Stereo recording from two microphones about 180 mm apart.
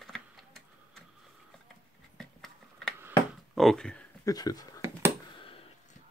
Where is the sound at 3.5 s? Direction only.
Centre (ahead or behind).